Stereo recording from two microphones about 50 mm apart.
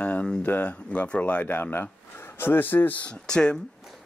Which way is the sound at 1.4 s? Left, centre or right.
Left.